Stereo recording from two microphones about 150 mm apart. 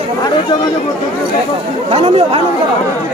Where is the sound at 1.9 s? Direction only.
40° right (ahead or behind).